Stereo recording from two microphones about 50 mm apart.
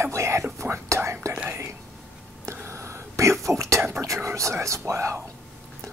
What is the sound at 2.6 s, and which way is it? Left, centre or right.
Whispering, right.